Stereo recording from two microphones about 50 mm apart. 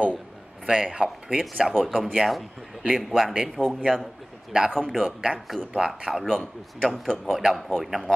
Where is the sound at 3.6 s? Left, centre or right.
Left.